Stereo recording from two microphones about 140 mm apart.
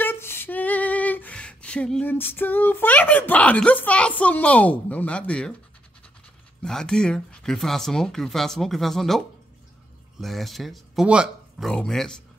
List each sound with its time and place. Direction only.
0.0 s female singing: 15° left (ahead or behind)
6.6 s speech: 5° left (ahead or behind)
10.2 s speech: centre (ahead or behind)